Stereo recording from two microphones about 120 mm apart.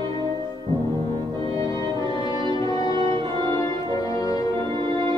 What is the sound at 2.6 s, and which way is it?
Music, 30° left (ahead or behind).